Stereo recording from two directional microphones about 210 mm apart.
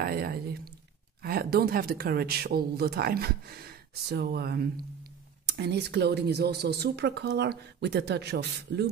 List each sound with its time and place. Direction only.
0.0 s speech: 45° right (ahead or behind)